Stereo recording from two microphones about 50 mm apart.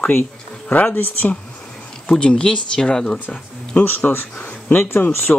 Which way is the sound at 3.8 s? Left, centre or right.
Left.